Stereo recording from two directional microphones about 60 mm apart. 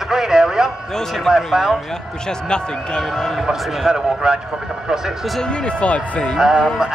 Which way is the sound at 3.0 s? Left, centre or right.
Centre.